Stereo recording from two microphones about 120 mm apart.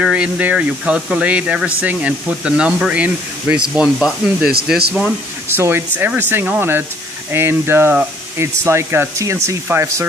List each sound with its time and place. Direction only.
0.0 s speech: 10° right (ahead or behind)
5.6 s speech: 20° right (ahead or behind)